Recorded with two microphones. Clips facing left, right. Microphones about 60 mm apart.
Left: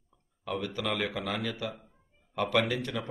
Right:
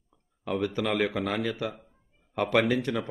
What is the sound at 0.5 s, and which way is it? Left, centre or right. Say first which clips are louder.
A man's voice: right 5 dB; right.